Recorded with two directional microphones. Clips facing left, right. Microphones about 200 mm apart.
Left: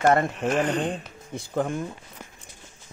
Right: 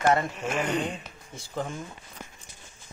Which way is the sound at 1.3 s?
55° left (ahead or behind).